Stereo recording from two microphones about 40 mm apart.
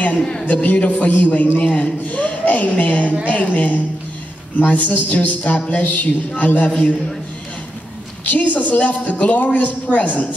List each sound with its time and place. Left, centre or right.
0.2 s a man's voice: left
0.5 s a man's voice: left
8.3 s a man's voice: left